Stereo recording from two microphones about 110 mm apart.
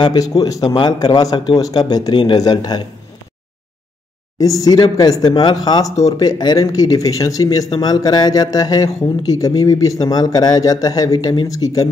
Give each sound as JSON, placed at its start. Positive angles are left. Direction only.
{"t": 0.0, "sound": "speech", "side_deg": 35}
{"t": 4.4, "sound": "speech", "side_deg": 35}